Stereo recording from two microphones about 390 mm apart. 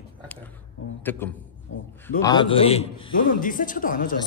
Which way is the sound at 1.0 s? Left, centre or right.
Centre.